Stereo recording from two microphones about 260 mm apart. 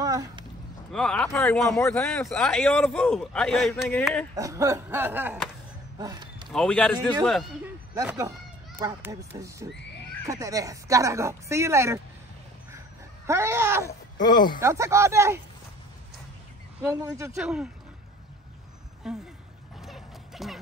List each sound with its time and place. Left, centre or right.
0.0 s a sound: centre
0.9 s speech: centre
4.4 s speech: centre
5.9 s a sound: centre
6.5 s speech: centre
7.9 s speech: centre
13.3 s speech: centre
14.2 s speech: centre
14.6 s speech: centre
16.8 s speech: centre
19.1 s speech: centre
19.8 s a sound: centre